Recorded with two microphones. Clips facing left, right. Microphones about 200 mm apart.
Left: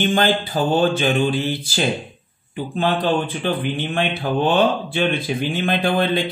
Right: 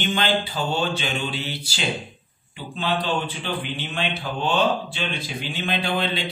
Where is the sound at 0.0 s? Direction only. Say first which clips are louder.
Left 5 dB; 50° left (ahead or behind).